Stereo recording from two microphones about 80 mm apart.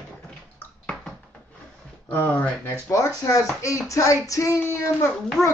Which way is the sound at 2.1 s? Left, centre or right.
Left.